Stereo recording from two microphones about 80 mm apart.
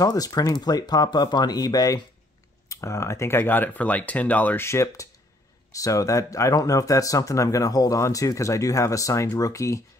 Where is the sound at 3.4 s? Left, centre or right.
Left.